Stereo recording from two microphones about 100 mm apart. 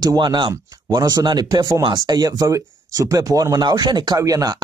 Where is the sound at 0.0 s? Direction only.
45° right (ahead or behind).